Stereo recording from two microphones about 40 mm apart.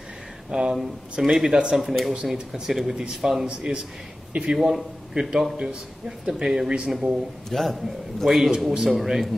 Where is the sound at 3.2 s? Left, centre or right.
Centre.